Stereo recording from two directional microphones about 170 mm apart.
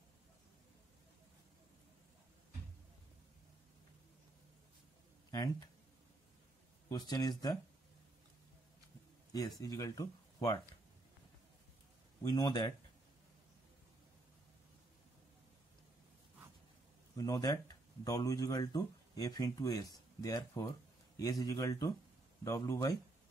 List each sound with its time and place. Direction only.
5.3 s speech: 20° left (ahead or behind)
6.9 s speech: 20° left (ahead or behind)
9.6 s speech: 20° left (ahead or behind)
12.2 s speech: 25° left (ahead or behind)
17.2 s speech: 20° left (ahead or behind)